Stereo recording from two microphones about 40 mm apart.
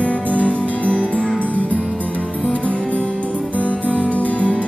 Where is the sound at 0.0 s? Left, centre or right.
Left.